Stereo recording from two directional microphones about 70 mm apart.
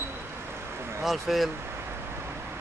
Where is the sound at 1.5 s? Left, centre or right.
Right.